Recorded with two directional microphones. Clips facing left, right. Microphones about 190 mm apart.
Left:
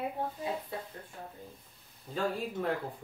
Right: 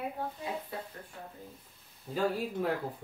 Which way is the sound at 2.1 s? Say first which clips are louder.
Right 2 dB; 5° right (ahead or behind).